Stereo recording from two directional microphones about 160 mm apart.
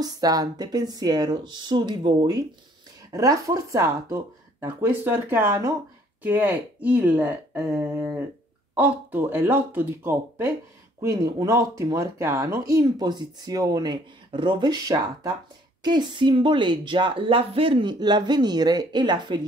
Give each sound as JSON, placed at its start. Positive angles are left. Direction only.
{"t": 0.0, "sound": "speech", "side_deg": -25}